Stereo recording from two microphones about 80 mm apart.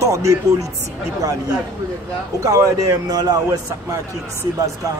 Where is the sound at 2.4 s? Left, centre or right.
Right.